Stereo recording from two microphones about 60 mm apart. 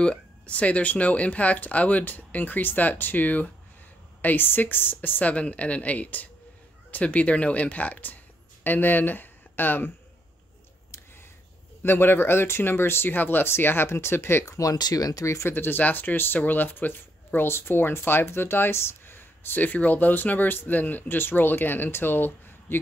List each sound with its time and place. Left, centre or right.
0.0 s speech: centre; by 9.9 s left
11.8 s speech: left
14.4 s speech: left
15.2 s speech: left
15.5 s speech: left